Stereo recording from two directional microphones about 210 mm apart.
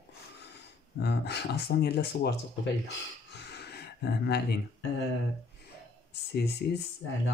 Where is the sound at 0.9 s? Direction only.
50° left (ahead or behind).